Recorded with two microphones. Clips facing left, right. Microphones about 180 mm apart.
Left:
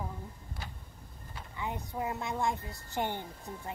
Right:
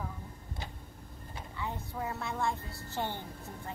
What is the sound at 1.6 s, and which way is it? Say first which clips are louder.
A woman's voice: left 2 dB; 15° left (ahead or behind).